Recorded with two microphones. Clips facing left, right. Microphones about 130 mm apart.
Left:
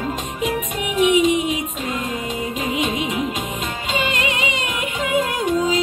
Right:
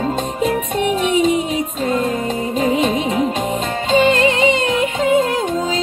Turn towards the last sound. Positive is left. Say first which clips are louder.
# right 1 dB
turn(degrees=-25)  # may be behind; listen again after turning